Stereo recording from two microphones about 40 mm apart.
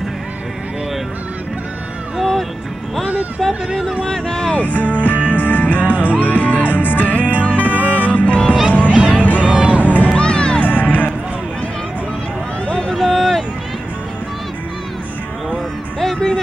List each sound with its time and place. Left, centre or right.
2.1 s music: centre
3.3 s speech: centre
4.0 s a sound: centre
4.6 s music: left
8.9 s music: right
9.4 s a sound: right
9.8 s music: left
10.1 s music: left
10.6 s music: left
12.6 s a sound: left
12.9 s a sound: centre
16.0 s music: centre